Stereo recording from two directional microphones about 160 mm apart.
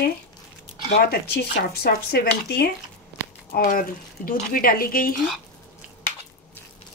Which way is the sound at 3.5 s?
60° left (ahead or behind).